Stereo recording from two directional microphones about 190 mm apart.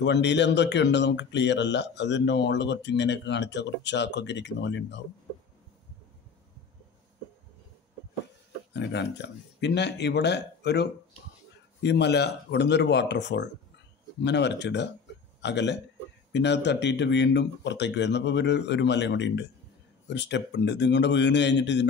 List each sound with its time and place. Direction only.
0.0 s speech: 65° left (ahead or behind)
8.7 s speech: 65° left (ahead or behind)